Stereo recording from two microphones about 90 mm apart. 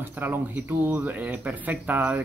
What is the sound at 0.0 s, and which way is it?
Speech, 25° right (ahead or behind).